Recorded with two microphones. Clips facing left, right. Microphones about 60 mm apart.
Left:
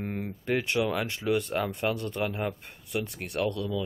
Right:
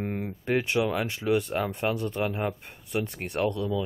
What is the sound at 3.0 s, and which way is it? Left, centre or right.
Speech, right.